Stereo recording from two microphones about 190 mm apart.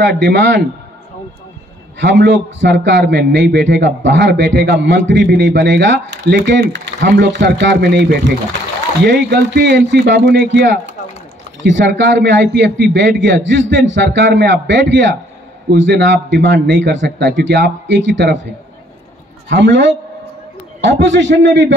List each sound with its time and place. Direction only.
0.3 s a man's voice: 65° right (ahead or behind)
2.0 s a man's voice: 70° right (ahead or behind)
19.5 s a man's voice: 70° right (ahead or behind)